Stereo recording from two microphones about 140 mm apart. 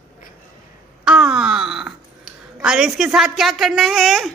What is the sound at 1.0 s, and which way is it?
Wail, 5° right (ahead or behind).